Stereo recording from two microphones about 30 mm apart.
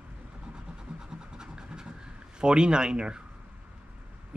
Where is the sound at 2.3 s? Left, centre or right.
Right.